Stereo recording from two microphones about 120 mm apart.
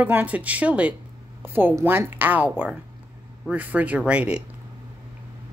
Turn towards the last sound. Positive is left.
turn(degrees=-10)  # may be behind; listen again after turning